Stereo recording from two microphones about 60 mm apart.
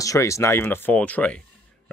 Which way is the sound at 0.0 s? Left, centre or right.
Left.